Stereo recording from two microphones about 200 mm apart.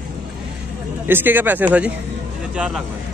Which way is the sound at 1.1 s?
10° right (ahead or behind).